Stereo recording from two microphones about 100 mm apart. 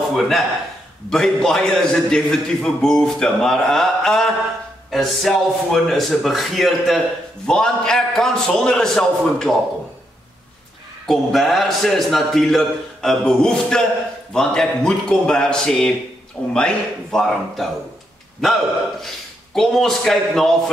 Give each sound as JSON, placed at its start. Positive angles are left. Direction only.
{"t": 0.1, "sound": "a man's voice", "side_deg": 0}
{"t": 11.1, "sound": "a man's voice", "side_deg": 0}